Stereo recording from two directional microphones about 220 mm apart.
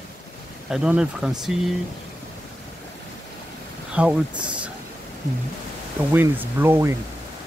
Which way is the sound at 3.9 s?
5° right (ahead or behind).